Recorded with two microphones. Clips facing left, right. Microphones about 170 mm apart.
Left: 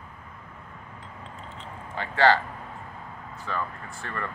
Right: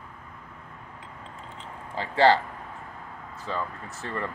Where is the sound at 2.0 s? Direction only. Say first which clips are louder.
Right 1 dB; 30° right (ahead or behind).